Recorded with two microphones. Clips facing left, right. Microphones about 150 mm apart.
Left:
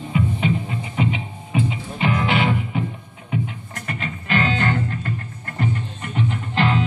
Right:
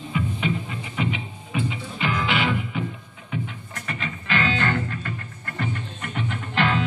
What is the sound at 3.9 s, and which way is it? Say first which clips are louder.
Music: left 3 dB; 45° left (ahead or behind).